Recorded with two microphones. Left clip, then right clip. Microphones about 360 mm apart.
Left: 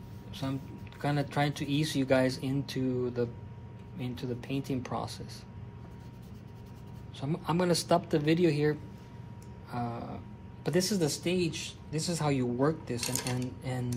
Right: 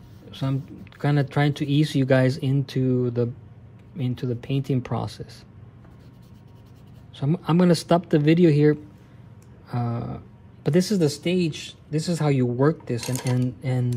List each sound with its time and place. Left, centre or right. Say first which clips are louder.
0.3 s a sound: right 7 dB; right
1.0 s speech: right 6 dB; right
7.2 s speech: right 8 dB; right